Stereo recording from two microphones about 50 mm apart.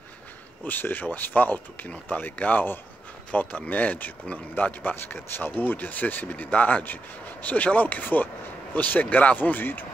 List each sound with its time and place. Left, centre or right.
0.7 s speech: left